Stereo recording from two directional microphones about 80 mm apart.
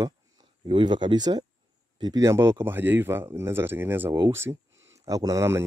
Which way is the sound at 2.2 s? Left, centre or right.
Right.